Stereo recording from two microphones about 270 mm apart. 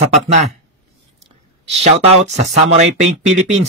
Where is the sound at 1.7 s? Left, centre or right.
Right.